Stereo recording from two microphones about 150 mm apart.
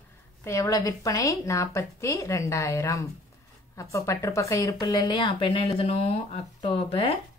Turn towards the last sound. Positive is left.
turn(degrees=40)  # may be behind; listen again after turning